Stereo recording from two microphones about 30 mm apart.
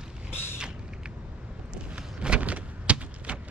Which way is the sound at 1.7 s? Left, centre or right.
Right.